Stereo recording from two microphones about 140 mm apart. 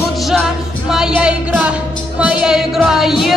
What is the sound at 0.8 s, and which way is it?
Speech, 5° right (ahead or behind).